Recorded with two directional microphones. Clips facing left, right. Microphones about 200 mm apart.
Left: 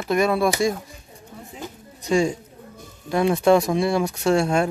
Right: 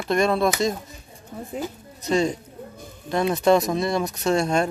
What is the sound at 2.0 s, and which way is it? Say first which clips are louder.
Speech: left 1 dB; 10° left (ahead or behind).